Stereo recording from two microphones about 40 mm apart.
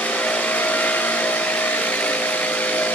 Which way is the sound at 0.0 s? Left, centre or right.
Left.